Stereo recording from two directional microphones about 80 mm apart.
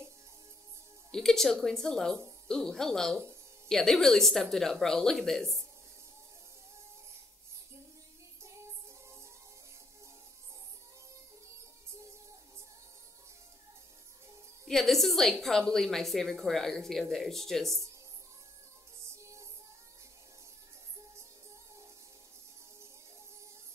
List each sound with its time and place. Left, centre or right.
1.1 s a woman's voice: centre
8.4 s music: right
14.7 s a woman's voice: centre